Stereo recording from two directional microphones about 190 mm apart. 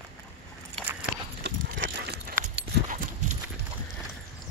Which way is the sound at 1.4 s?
65° right (ahead or behind).